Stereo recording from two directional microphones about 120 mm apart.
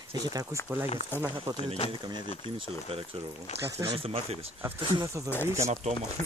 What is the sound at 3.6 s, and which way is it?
Speech, 25° right (ahead or behind).